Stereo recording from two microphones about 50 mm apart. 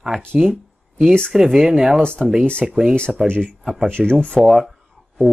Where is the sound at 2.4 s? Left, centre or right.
Centre.